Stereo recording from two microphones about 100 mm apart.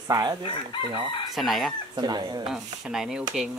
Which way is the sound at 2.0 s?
45° right (ahead or behind).